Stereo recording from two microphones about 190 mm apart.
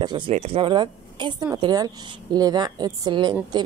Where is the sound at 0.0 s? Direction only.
20° right (ahead or behind).